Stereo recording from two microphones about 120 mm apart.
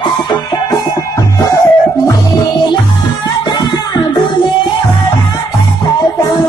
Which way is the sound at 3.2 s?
40° left (ahead or behind).